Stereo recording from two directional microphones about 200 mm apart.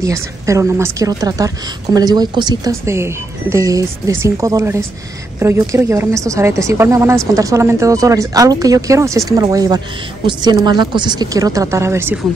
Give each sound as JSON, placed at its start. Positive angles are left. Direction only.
{"t": 0.0, "sound": "a woman's voice", "side_deg": -15}